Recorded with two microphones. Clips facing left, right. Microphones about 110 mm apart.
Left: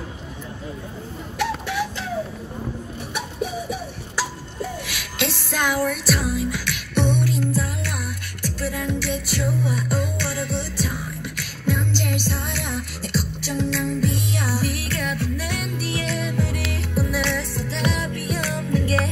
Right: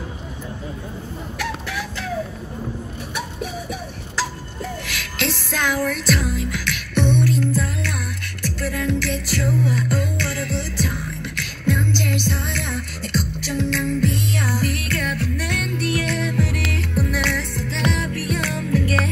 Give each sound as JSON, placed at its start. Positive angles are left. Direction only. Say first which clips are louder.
{"t": 1.4, "sound": "music", "louder": "left 5 dB", "side_deg": 20}
{"t": 5.5, "sound": "music", "louder": "even", "side_deg": 15}